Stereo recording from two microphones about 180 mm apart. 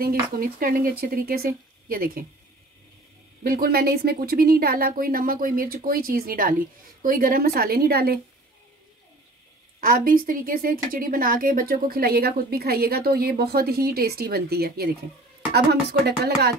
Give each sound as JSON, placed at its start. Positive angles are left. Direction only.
{"t": 0.0, "sound": "speech", "side_deg": -55}
{"t": 3.4, "sound": "a woman's voice", "side_deg": -55}
{"t": 9.8, "sound": "a woman's voice", "side_deg": -50}